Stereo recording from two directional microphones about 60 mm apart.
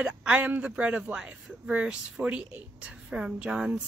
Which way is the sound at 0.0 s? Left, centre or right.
Centre.